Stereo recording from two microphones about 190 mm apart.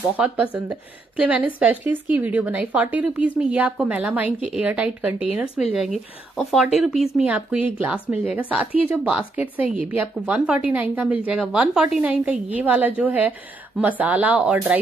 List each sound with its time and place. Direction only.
0.2 s a woman's voice: 5° right (ahead or behind)